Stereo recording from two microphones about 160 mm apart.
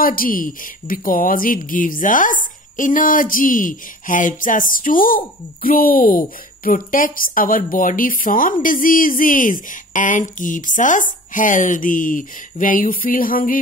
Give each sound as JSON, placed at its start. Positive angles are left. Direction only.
{"t": 0.0, "sound": "a woman's voice", "side_deg": 60}